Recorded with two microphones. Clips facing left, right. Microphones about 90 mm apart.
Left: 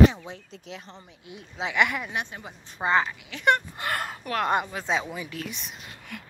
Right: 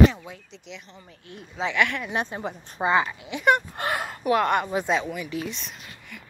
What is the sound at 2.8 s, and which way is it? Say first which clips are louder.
Speech: right 2 dB; 10° right (ahead or behind).